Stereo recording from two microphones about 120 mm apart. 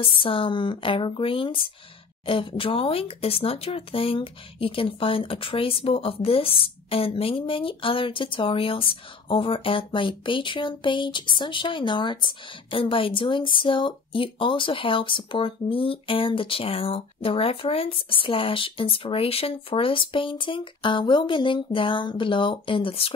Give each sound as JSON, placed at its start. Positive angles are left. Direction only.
{"t": 0.0, "sound": "speech", "side_deg": 50}